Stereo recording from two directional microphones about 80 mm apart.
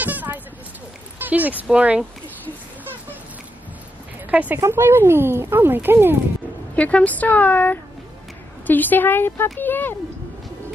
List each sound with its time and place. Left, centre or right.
0.0 s a sound: right
1.2 s speech: right
4.3 s speech: centre
4.6 s speech: right
6.7 s speech: centre